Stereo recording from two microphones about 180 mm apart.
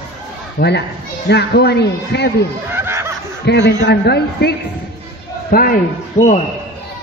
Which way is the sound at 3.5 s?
70° left (ahead or behind).